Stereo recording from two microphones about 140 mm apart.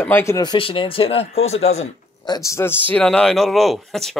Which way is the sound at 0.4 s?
35° left (ahead or behind).